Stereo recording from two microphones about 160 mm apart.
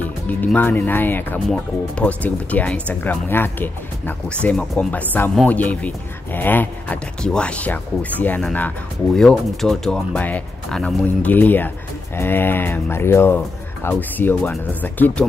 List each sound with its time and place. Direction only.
0.0 s speech: 10° left (ahead or behind)